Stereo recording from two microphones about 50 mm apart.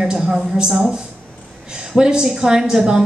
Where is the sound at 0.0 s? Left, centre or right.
Centre.